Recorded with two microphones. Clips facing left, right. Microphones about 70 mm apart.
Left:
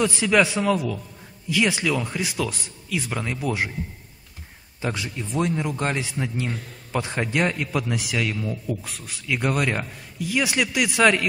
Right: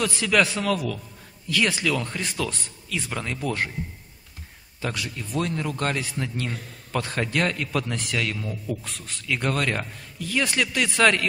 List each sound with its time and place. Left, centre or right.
0.0 s a man's voice: centre
4.8 s a man's voice: left